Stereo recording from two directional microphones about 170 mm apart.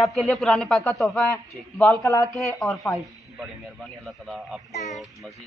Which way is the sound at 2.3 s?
5° left (ahead or behind).